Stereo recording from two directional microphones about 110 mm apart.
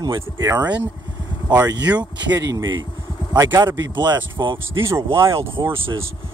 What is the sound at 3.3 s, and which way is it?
Speech, 25° right (ahead or behind).